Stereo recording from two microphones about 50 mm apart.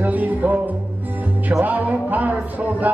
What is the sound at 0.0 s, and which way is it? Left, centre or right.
Music, right.